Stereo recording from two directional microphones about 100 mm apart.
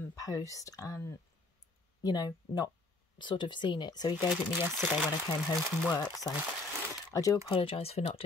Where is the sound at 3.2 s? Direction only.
50° left (ahead or behind).